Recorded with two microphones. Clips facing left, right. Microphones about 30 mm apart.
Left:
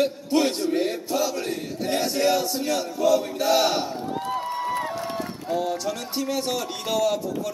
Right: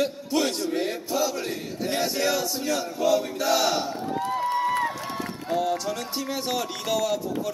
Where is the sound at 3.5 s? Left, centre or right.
Centre.